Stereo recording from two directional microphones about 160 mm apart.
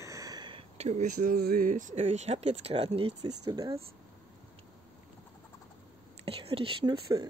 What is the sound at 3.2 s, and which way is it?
Speech, 25° right (ahead or behind).